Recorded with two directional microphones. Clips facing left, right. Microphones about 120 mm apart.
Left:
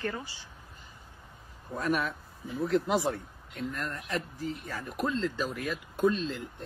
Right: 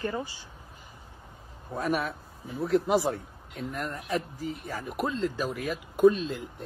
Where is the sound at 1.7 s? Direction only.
5° right (ahead or behind).